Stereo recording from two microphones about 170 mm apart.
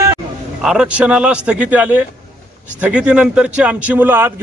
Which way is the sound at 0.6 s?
5° right (ahead or behind).